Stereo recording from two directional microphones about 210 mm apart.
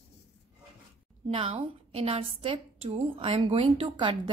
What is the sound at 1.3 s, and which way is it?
A woman's voice, 30° right (ahead or behind).